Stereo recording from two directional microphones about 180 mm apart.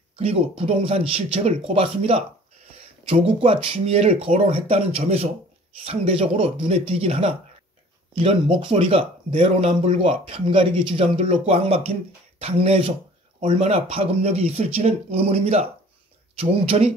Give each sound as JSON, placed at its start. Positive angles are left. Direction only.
{"t": 0.1, "sound": "speech", "side_deg": -30}